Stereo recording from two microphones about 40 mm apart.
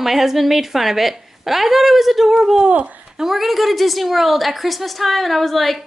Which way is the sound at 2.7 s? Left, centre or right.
Right.